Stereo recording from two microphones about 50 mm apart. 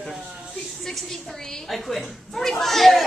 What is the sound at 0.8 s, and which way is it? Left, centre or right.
A woman's voice, centre.